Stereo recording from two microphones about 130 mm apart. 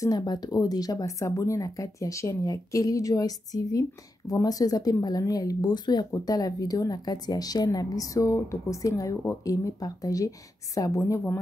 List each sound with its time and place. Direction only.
0.0 s speech: 30° left (ahead or behind)